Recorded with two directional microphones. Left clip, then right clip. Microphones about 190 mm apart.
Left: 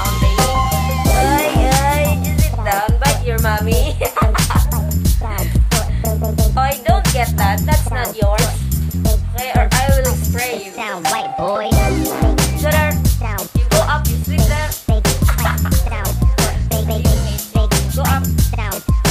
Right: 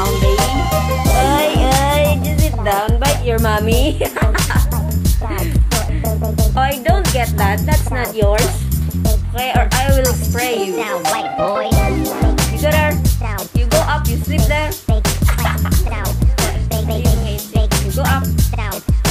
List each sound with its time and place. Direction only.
1.0 s music: centre (ahead or behind)
7.4 s music: 15° left (ahead or behind); by 18.4 s centre (ahead or behind)